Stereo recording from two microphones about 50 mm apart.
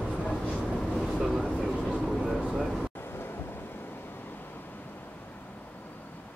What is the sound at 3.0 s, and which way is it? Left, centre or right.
Vehicle, left.